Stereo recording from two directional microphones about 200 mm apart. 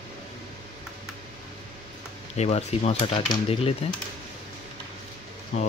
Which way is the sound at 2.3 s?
35° left (ahead or behind).